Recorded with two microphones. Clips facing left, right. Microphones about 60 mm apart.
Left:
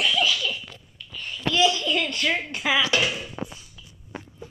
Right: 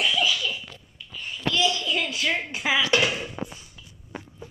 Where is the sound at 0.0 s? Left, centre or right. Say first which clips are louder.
Left 1 dB; centre.